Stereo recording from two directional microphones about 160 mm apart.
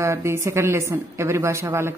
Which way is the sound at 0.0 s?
15° right (ahead or behind).